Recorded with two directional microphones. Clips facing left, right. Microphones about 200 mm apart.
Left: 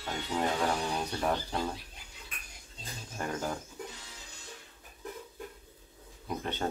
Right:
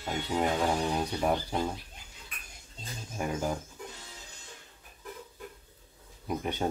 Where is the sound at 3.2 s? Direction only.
10° right (ahead or behind).